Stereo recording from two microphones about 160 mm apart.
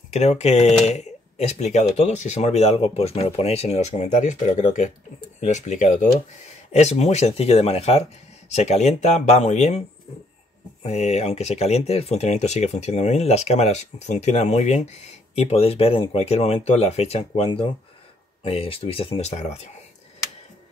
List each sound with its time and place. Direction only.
0.1 s speech: 45° left (ahead or behind)